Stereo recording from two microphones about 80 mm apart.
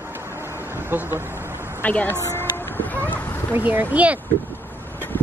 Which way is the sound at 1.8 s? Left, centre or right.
Left.